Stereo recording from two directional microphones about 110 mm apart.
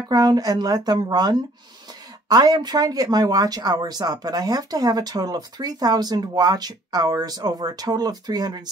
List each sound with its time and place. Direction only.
0.1 s speech: 35° right (ahead or behind)